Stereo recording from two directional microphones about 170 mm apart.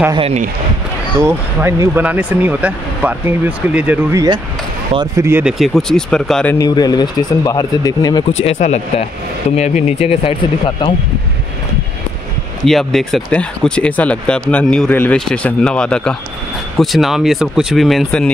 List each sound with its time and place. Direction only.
0.1 s speech: 35° right (ahead or behind)
1.2 s speech: 15° right (ahead or behind)
5.4 s speech: centre (ahead or behind)
6.6 s speech: 25° left (ahead or behind)
8.3 s speech: 40° left (ahead or behind)
12.6 s speech: centre (ahead or behind)